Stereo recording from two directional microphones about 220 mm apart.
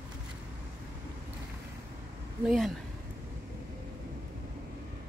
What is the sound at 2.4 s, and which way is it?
Speech, centre (ahead or behind).